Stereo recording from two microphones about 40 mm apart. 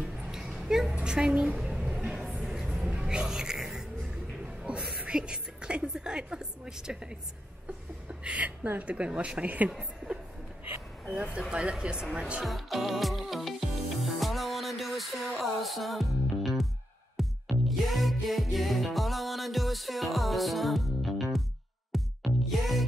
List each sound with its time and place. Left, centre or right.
0.3 s a sound: centre
1.0 s speech: right
1.8 s music: right
2.4 s vehicle: centre
3.0 s music: centre
4.6 s a sound: right
8.1 s speech: right
9.7 s a woman's voice: centre
11.1 s music: centre
11.8 s speech: right
12.4 s music: centre